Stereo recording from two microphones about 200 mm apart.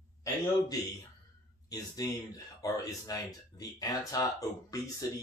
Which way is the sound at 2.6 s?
15° left (ahead or behind).